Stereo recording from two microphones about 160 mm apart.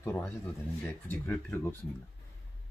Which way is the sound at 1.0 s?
10° left (ahead or behind).